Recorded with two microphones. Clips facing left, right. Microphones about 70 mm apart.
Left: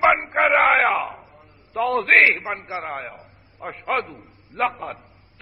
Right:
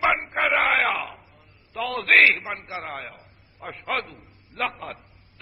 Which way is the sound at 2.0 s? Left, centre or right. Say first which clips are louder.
Right 1 dB; left.